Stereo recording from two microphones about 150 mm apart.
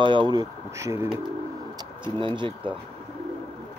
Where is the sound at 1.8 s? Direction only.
35° right (ahead or behind).